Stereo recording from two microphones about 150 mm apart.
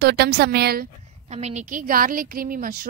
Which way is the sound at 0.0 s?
90° right.